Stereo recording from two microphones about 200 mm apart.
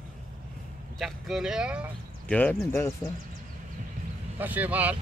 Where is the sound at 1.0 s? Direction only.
Centre (ahead or behind).